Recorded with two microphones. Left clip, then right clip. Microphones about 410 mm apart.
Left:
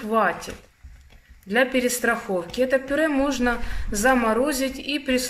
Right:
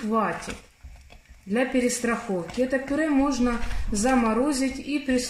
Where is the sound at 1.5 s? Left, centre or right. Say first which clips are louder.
Left 3 dB; left.